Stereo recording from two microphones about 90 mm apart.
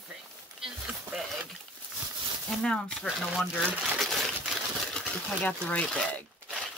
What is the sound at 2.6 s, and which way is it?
Speech, 10° left (ahead or behind).